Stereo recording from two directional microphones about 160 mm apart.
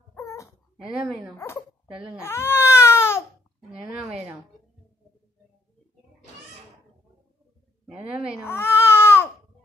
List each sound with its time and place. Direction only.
0.1 s a sound: 20° left (ahead or behind)
0.7 s a woman's voice: 5° right (ahead or behind)
2.2 s baby cry: 15° left (ahead or behind)
7.8 s a woman's voice: 5° right (ahead or behind)
8.5 s baby cry: 15° left (ahead or behind)